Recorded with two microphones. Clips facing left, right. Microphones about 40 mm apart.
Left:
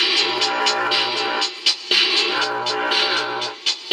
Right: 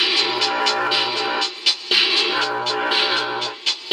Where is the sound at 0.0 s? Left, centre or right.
Centre.